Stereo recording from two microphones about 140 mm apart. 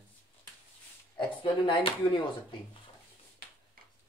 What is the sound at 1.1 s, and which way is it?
Speech, 40° left (ahead or behind).